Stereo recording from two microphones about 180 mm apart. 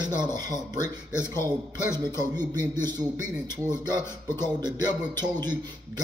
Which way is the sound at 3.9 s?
20° right (ahead or behind).